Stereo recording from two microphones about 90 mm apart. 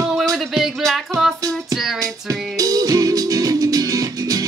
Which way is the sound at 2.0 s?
40° right (ahead or behind).